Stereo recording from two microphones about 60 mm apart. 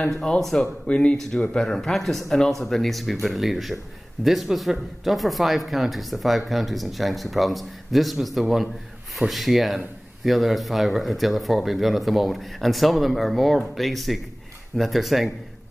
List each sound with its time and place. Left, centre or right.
0.0 s speech: centre
0.8 s speech: centre